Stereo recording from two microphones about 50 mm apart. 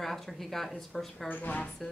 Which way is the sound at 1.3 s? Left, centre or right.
Left.